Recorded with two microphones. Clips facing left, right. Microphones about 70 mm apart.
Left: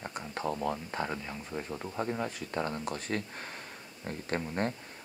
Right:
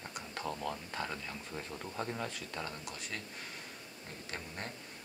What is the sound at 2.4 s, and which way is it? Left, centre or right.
Speech, left.